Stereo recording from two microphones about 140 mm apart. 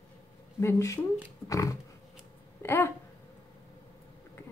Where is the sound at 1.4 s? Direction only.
25° left (ahead or behind).